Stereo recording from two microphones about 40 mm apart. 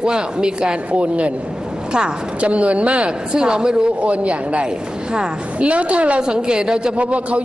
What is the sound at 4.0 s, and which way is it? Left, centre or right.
A woman's voice, right.